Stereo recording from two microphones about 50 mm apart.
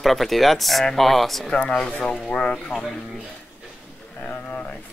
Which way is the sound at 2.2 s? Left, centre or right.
Left.